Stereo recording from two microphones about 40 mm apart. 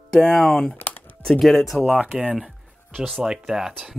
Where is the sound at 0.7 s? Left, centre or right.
Left.